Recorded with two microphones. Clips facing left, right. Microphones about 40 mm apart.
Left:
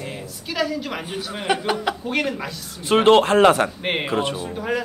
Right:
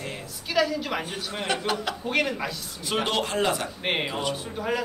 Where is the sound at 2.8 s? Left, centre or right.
Left.